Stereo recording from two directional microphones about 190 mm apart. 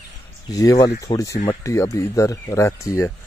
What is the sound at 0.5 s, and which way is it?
Speech, 20° left (ahead or behind).